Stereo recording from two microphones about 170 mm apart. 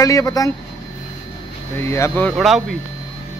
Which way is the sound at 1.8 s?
15° left (ahead or behind).